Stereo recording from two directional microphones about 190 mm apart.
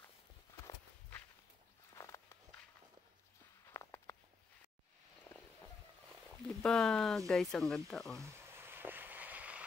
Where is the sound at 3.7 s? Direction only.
15° left (ahead or behind).